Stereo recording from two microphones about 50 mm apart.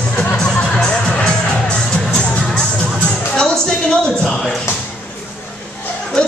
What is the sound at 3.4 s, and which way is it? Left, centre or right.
A woman's voice, centre.